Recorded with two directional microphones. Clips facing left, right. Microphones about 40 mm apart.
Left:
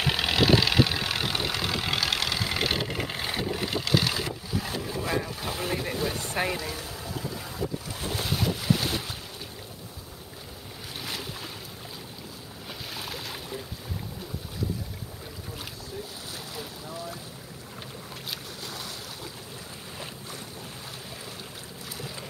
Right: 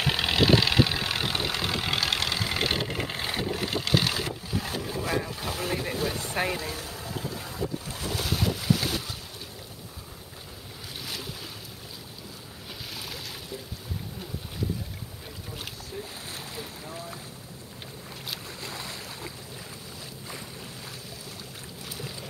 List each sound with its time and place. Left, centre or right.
0.0 s vehicle: centre
4.6 s boat: centre
6.3 s speech: centre
6.7 s boat: centre
7.3 s boat: centre
11.0 s boat: centre
12.9 s boat: centre
16.5 s boat: right
18.7 s boat: right